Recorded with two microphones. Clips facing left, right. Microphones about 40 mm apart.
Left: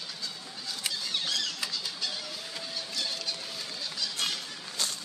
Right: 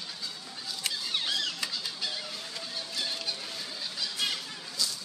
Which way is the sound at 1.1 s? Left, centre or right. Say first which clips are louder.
Right 1 dB; centre.